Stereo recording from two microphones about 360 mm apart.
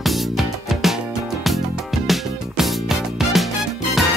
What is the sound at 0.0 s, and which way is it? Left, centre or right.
Music, centre.